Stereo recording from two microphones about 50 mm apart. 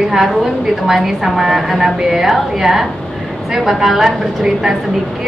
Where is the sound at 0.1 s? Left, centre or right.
Centre.